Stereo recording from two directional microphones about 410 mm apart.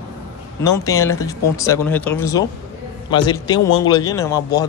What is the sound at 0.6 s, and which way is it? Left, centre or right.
Speech, centre.